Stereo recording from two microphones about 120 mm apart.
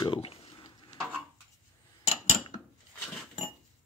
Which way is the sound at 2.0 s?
50° left (ahead or behind).